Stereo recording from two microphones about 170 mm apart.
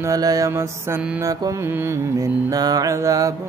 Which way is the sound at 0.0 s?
20° right (ahead or behind).